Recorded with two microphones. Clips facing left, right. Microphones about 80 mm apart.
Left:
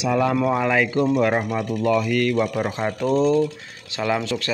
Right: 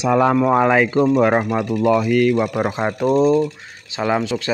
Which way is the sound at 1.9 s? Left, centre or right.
Centre.